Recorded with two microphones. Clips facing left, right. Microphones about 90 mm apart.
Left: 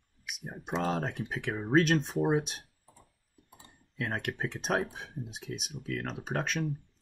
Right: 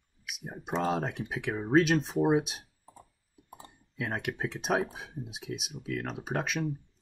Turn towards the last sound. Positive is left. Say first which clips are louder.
# right 1 dB
turn(degrees=-5)  # may be behind; listen again after turning